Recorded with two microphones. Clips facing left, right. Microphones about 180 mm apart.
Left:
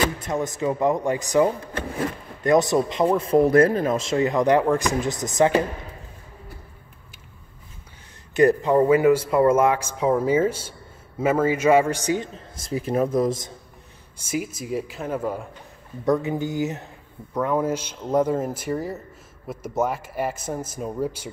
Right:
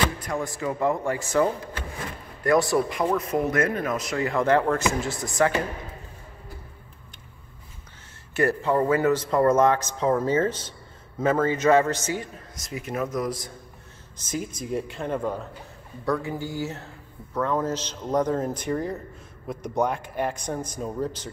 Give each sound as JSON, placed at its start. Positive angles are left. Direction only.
{"t": 0.2, "sound": "speech", "side_deg": 20}
{"t": 8.3, "sound": "speech", "side_deg": 15}
{"t": 12.5, "sound": "speech", "side_deg": 30}
{"t": 14.1, "sound": "a man's voice", "side_deg": 10}
{"t": 16.1, "sound": "a man's voice", "side_deg": 20}